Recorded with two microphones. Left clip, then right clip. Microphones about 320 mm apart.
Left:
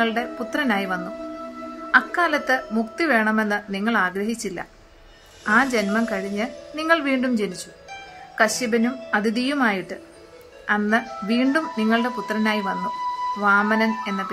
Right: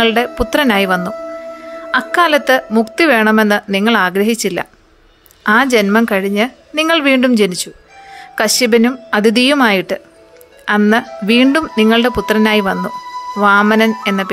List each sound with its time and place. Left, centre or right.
0.0 s a woman's voice: right